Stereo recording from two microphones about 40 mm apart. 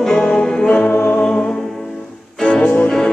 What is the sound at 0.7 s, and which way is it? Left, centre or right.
Music, left.